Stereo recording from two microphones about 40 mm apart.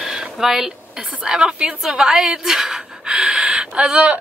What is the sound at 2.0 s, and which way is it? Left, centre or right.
A woman's voice, centre.